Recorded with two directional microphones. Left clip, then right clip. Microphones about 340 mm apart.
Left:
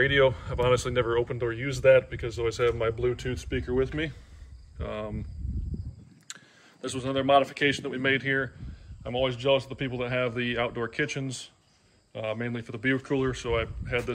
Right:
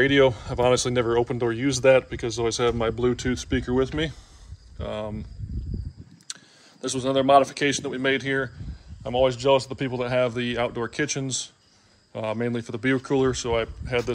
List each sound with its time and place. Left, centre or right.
0.0 s speech: centre
6.2 s speech: centre